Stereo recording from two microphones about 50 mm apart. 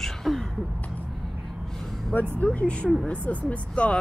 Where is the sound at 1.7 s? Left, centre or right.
Centre.